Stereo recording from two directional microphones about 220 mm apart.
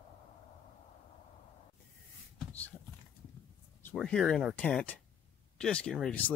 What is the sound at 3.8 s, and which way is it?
Speech, 5° left (ahead or behind).